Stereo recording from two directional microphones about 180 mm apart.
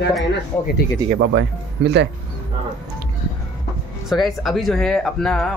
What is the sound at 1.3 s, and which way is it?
Speech, 70° right (ahead or behind).